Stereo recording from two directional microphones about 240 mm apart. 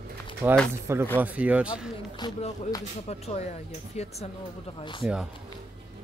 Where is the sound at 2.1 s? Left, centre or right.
Centre.